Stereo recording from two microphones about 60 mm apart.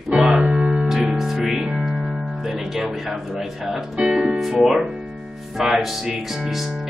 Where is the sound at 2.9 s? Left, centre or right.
Centre.